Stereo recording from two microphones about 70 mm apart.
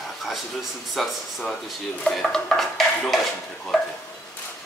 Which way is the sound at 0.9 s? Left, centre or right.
Centre.